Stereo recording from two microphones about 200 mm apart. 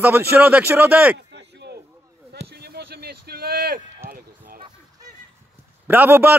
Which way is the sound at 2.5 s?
55° right (ahead or behind).